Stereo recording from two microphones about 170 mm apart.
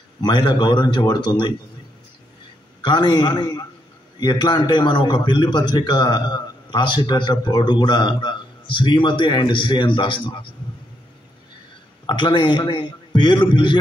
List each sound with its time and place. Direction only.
0.2 s a man's voice: 25° left (ahead or behind)
2.8 s a man's voice: 30° left (ahead or behind)
12.1 s a man's voice: 30° left (ahead or behind)